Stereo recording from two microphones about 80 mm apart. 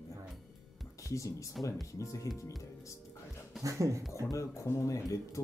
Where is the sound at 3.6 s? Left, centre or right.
Right.